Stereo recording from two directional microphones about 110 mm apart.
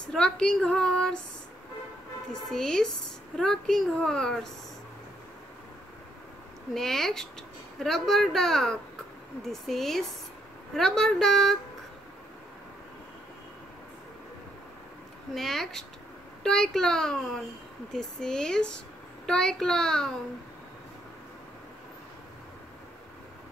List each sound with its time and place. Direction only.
0.1 s a woman's voice: 5° left (ahead or behind)
2.5 s a child's voice: 5° left (ahead or behind)
6.7 s a child's voice: 5° left (ahead or behind)
15.3 s a child's voice: centre (ahead or behind)